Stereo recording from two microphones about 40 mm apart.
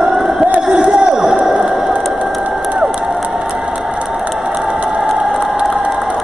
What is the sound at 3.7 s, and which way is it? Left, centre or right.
Mechanisms, right.